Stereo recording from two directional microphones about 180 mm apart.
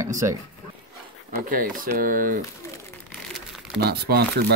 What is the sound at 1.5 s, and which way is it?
Speech, 50° right (ahead or behind).